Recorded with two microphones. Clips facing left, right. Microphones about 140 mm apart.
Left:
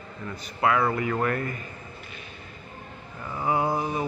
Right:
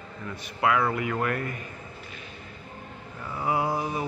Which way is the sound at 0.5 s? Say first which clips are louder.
Left 1 dB; centre (ahead or behind).